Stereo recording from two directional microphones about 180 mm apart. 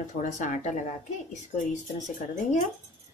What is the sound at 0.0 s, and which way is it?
A woman's voice, 40° left (ahead or behind).